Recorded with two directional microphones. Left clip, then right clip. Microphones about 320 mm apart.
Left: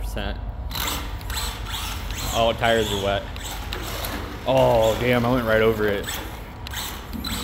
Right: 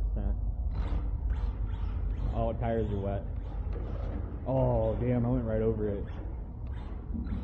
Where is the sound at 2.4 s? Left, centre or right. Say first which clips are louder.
Left 12 dB; centre.